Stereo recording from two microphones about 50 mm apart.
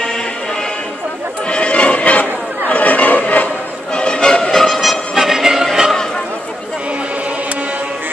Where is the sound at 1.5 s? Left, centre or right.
Left.